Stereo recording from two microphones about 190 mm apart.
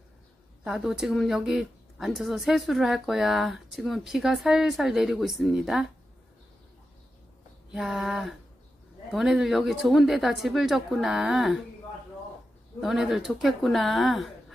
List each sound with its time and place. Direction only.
0.7 s a woman's voice: centre (ahead or behind)
7.7 s a woman's voice: centre (ahead or behind)
12.8 s a woman's voice: centre (ahead or behind)